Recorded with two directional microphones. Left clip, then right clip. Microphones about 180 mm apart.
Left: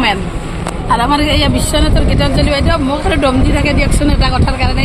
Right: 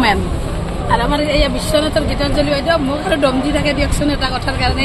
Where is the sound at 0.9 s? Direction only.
50° left (ahead or behind).